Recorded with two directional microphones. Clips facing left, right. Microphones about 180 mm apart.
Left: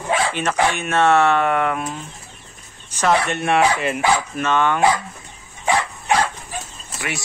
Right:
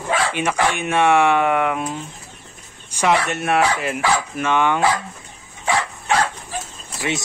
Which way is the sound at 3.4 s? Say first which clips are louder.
Left 1 dB; centre (ahead or behind).